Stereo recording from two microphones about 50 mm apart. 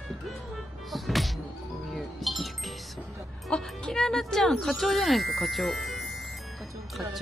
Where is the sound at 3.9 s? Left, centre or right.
Centre.